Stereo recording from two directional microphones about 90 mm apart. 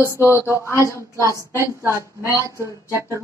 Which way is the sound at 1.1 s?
40° right (ahead or behind).